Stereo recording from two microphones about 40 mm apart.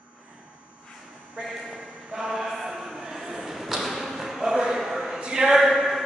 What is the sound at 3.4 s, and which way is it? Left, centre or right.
Arrow, centre.